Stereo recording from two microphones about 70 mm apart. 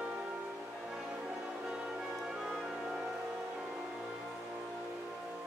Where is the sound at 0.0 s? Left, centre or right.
Centre.